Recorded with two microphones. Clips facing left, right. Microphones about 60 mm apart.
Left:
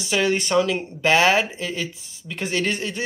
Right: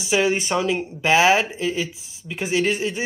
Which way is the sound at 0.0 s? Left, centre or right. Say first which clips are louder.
Right 1 dB; centre.